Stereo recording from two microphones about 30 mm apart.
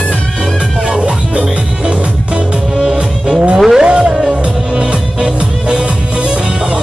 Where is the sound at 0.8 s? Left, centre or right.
Right.